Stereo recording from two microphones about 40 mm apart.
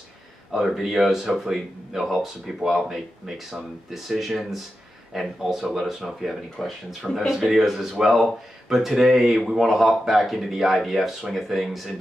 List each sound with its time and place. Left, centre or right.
0.5 s speech: centre